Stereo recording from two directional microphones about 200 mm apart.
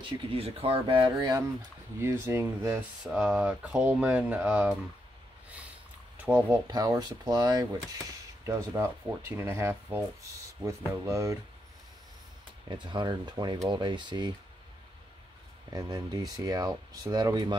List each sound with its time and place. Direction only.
0.0 s speech: 30° right (ahead or behind)
2.0 s speech: 10° right (ahead or behind)
6.2 s speech: 10° right (ahead or behind)
6.7 s speech: 20° right (ahead or behind)
12.6 s speech: 20° right (ahead or behind)
15.7 s speech: 20° right (ahead or behind)